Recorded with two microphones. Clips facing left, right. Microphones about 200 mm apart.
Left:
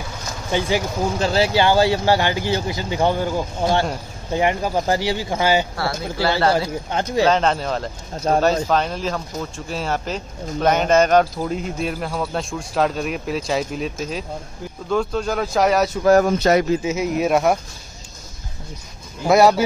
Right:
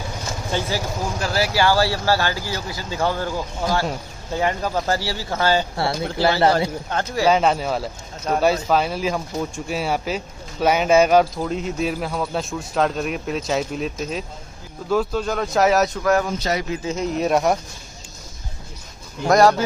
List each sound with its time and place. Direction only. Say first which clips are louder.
0.5 s speech: left 4 dB; 15° left (ahead or behind)
6.9 s speech: left 3 dB; 15° left (ahead or behind)
7.2 s speech: right 4 dB; 10° right (ahead or behind)
8.3 s speech: left 4 dB; 35° left (ahead or behind)
8.6 s speech: right 1 dB; 5° right (ahead or behind)
16.0 s speech: left 5 dB; 35° left (ahead or behind)
16.3 s a man's voice: left 7 dB; 55° left (ahead or behind)
16.8 s speech: left 2 dB; 5° left (ahead or behind)
19.2 s speech: left 1 dB; 10° left (ahead or behind)